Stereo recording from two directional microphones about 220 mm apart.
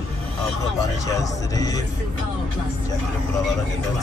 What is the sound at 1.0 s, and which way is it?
Speech, 15° left (ahead or behind).